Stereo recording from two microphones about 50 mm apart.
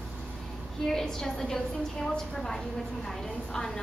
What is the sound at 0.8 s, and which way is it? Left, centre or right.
A woman's voice, centre.